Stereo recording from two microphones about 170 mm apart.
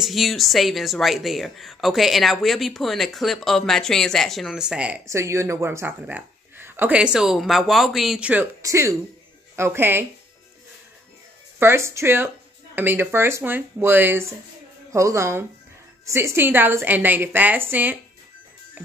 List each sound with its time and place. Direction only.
0.0 s speech: centre (ahead or behind)
5.0 s speech: 15° right (ahead or behind)
11.6 s speech: 15° right (ahead or behind)